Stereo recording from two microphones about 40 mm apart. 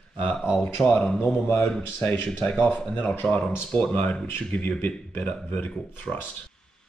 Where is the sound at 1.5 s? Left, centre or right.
Left.